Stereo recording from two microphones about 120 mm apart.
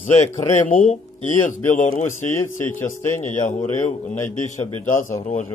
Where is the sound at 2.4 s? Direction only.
20° left (ahead or behind).